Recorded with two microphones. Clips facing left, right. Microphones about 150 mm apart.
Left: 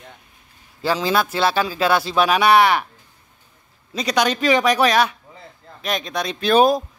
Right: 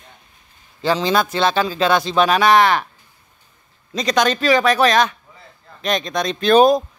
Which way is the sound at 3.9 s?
10° left (ahead or behind).